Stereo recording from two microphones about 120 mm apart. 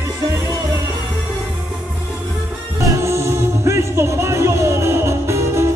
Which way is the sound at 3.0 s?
20° right (ahead or behind).